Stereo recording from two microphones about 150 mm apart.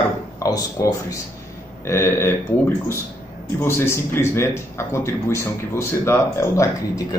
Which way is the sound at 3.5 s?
15° left (ahead or behind).